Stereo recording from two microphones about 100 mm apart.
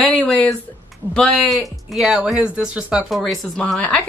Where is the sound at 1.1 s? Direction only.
5° left (ahead or behind); by 3.2 s 10° right (ahead or behind).